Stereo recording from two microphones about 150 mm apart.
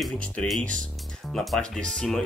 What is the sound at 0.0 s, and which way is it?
Speech, 5° left (ahead or behind).